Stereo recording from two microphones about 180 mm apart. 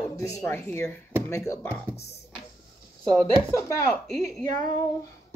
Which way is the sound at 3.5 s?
15° left (ahead or behind).